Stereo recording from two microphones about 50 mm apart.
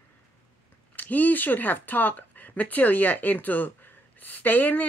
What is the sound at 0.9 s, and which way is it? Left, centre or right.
Speech, left.